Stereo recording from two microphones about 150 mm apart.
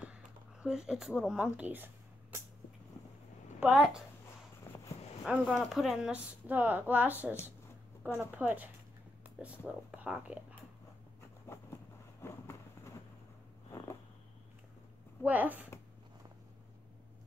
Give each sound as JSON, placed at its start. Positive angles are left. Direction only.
{"t": 0.0, "sound": "speech", "side_deg": -10}
{"t": 3.5, "sound": "a woman's voice", "side_deg": -5}
{"t": 4.7, "sound": "a sound", "side_deg": 15}
{"t": 5.2, "sound": "a woman's voice", "side_deg": 0}
{"t": 12.2, "sound": "vehicle", "side_deg": 15}
{"t": 15.2, "sound": "a woman's voice", "side_deg": -10}